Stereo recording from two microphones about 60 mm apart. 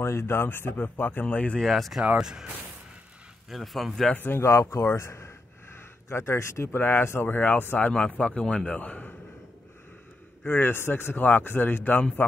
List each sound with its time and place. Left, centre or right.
0.0 s speech: left
1.2 s a man's voice: left
1.6 s a man's voice: centre
3.4 s a man's voice: centre
4.1 s speech: left
4.4 s speech: left
6.8 s speech: left
8.2 s a man's voice: centre
10.4 s speech: left